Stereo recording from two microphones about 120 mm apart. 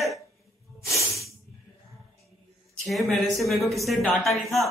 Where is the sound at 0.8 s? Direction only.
25° left (ahead or behind).